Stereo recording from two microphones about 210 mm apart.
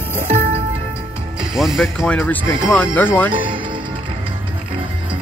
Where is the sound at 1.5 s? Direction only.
Centre (ahead or behind).